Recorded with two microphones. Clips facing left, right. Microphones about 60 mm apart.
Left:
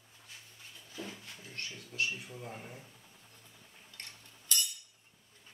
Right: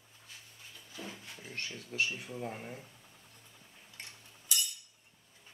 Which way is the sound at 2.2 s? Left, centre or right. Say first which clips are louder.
Right 4 dB; right.